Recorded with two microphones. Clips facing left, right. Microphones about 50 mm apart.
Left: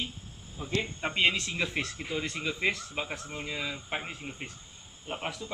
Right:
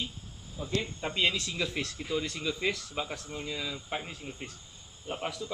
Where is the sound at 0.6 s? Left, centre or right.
Left.